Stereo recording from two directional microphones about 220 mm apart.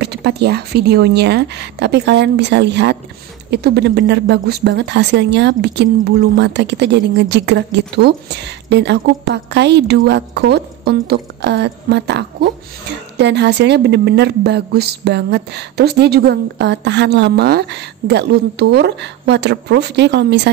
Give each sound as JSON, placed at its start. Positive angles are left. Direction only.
{"t": 0.0, "sound": "speech", "side_deg": -50}